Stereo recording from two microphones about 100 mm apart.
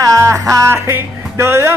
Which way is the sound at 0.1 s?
30° right (ahead or behind).